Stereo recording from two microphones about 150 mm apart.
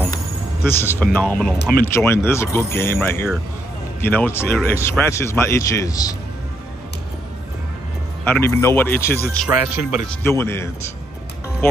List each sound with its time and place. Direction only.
0.7 s speech: 15° left (ahead or behind)
8.2 s speech: 15° left (ahead or behind)
9.7 s speech: 5° right (ahead or behind)
10.2 s speech: 15° left (ahead or behind)